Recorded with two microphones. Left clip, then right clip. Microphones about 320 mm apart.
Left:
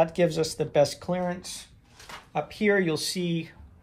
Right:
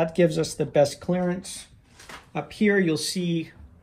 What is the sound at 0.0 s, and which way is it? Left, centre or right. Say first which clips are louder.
Speech: right 1 dB; centre.